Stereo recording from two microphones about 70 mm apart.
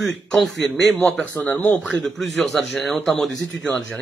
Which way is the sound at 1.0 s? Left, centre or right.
Left.